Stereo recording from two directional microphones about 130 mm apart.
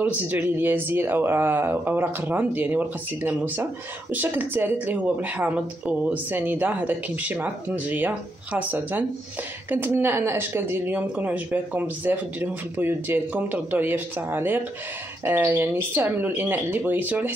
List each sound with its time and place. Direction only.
0.0 s speech: 15° right (ahead or behind)